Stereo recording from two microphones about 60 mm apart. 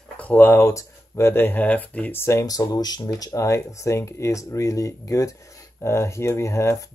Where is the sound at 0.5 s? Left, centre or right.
Left.